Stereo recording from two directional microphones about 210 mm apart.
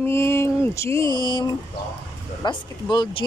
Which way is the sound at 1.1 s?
20° right (ahead or behind).